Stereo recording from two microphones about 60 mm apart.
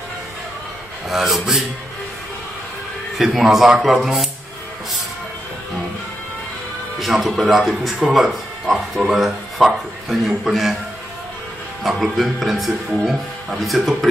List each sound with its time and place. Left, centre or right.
1.0 s a man's voice: centre
3.2 s speech: centre
7.0 s speech: centre
11.8 s speech: centre